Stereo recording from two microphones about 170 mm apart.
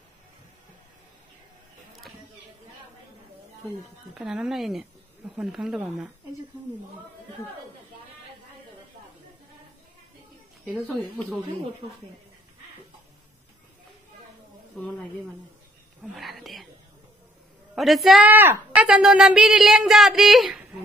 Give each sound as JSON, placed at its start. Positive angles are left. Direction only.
{"t": 4.1, "sound": "speech", "side_deg": -5}
{"t": 16.0, "sound": "speech", "side_deg": 0}
{"t": 17.7, "sound": "speech", "side_deg": 0}